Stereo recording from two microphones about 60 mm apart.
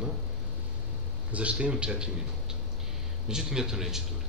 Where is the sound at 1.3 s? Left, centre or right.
Right.